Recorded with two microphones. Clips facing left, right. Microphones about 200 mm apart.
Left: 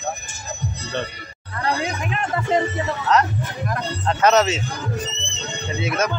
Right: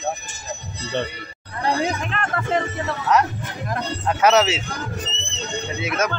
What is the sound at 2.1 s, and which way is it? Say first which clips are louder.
Speech: left 2 dB; 15° left (ahead or behind).